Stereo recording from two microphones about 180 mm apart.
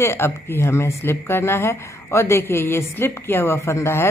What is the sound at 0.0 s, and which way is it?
A man's voice, 15° left (ahead or behind).